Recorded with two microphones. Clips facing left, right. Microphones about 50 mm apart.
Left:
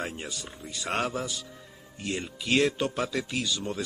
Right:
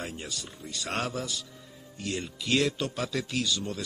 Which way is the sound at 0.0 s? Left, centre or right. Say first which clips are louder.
Left 2 dB; left.